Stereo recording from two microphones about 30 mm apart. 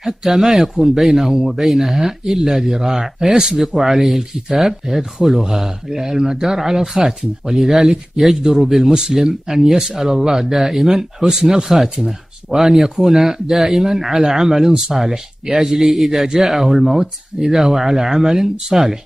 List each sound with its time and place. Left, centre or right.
0.0 s speech: centre
5.9 s speech: centre
7.5 s speech: centre
8.4 s speech: centre
17.0 s speech: right
17.6 s speech: centre